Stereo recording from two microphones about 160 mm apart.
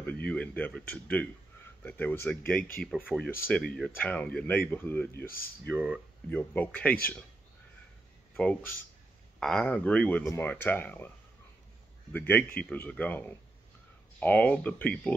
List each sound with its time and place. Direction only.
0.3 s speech: 10° left (ahead or behind)
5.2 s speech: 65° left (ahead or behind)
6.3 s speech: 10° left (ahead or behind)
8.4 s speech: 10° left (ahead or behind)
12.1 s speech: 10° left (ahead or behind)